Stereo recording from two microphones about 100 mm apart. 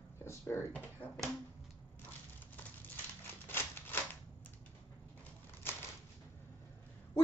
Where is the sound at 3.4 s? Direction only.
20° left (ahead or behind).